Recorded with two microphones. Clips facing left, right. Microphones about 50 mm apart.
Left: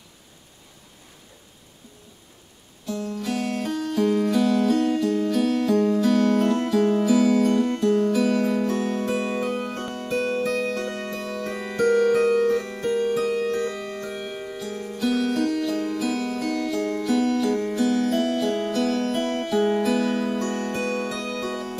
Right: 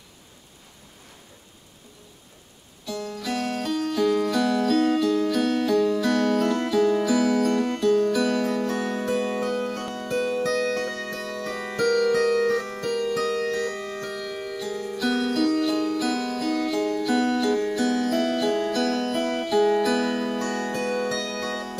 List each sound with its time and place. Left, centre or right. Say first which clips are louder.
2.8 s music: left 2 dB; right
9.1 s music: even; left
10.4 s music: right 1 dB; right
10.9 s music: left 1 dB; left
11.1 s music: left 1 dB; right
11.4 s music: even; left
11.7 s music: left 2 dB; right
14.6 s music: right 2 dB; left
14.9 s music: left 2 dB; right
19.4 s music: right 2 dB; left
19.7 s music: even; right
20.7 s music: even; left
21.3 s music: left 1 dB; right